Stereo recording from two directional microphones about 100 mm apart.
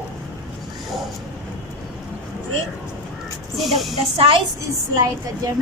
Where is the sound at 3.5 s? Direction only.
Centre (ahead or behind).